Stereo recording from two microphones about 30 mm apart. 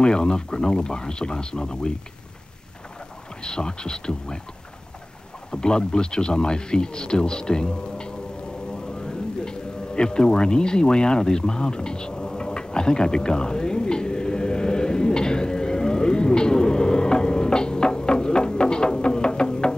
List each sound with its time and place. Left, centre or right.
0.0 s speech: left
3.4 s speech: left
5.5 s speech: left
9.0 s a sound: left